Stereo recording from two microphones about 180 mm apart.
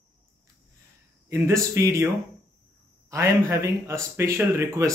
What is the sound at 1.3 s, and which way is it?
Speech, 15° right (ahead or behind).